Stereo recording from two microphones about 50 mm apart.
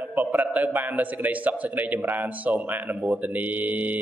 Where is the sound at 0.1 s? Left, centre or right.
Right.